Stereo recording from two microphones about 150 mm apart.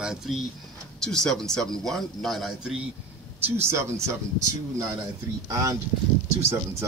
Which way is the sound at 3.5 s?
15° right (ahead or behind).